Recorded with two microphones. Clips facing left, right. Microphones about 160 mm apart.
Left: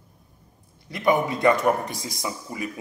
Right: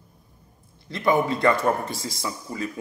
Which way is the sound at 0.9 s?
15° left (ahead or behind).